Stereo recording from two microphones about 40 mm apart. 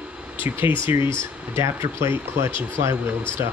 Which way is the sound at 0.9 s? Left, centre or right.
Right.